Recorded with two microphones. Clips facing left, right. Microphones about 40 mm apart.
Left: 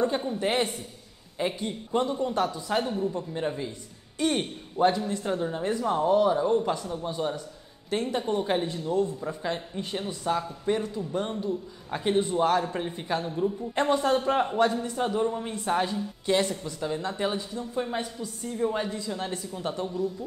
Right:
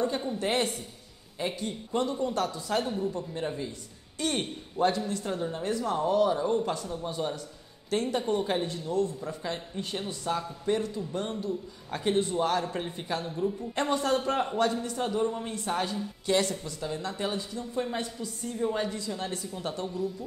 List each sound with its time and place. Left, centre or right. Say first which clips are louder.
0.2 s a man's voice: left 2 dB; centre